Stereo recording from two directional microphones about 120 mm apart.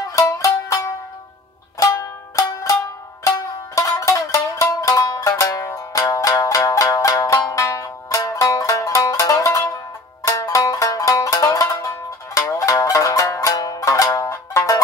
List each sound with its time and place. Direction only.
0.1 s music: 30° left (ahead or behind)